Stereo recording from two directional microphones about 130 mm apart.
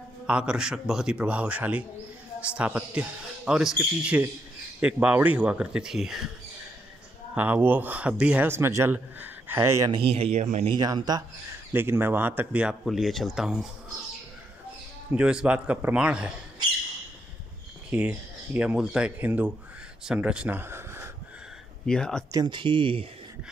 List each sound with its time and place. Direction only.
0.3 s a man's voice: 10° right (ahead or behind)
7.3 s a man's voice: 15° right (ahead or behind)
9.8 s speech: 45° right (ahead or behind); by 10.7 s 65° right (ahead or behind)
10.7 s speech: 35° right (ahead or behind)
11.7 s a man's voice: 15° right (ahead or behind)
15.0 s a man's voice: 10° right (ahead or behind)
17.8 s a man's voice: 10° right (ahead or behind)
21.8 s speech: 5° left (ahead or behind)
22.3 s speech: 35° right (ahead or behind)